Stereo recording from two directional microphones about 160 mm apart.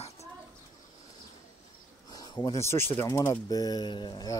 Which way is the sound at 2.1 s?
25° left (ahead or behind).